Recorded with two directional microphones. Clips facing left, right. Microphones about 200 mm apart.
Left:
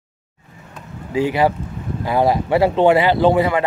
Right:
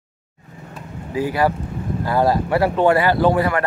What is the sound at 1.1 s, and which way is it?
Speech, 25° left (ahead or behind).